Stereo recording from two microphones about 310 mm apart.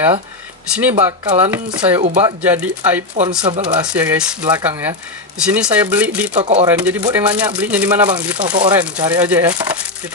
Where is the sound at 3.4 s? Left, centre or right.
Centre.